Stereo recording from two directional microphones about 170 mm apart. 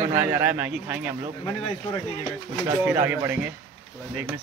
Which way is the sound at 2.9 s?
10° right (ahead or behind).